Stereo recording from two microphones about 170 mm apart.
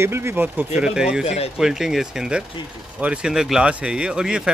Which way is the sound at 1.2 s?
35° left (ahead or behind).